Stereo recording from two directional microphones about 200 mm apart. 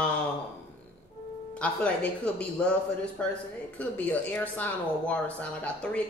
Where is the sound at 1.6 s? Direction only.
5° left (ahead or behind).